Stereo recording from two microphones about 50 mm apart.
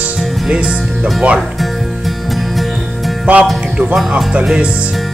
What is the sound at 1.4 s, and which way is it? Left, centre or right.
Music, centre.